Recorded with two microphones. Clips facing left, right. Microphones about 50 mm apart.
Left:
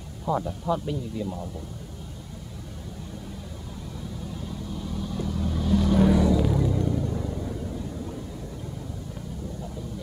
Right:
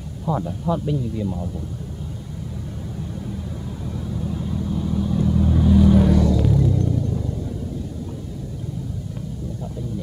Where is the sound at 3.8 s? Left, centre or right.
Centre.